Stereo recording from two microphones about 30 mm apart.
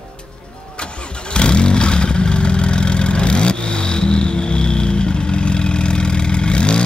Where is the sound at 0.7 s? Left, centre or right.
Left.